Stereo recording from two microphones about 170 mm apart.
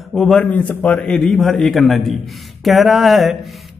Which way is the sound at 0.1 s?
5° left (ahead or behind).